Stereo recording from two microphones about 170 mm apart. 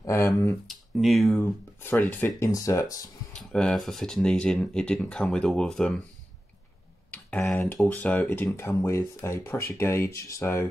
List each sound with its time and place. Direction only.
0.0 s speech: 15° left (ahead or behind)
0.7 s speech: centre (ahead or behind)
1.4 s speech: 10° left (ahead or behind)
3.3 s speech: 5° left (ahead or behind)
7.1 s speech: 5° left (ahead or behind)